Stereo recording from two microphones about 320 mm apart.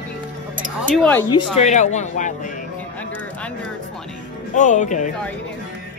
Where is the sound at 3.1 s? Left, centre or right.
Centre.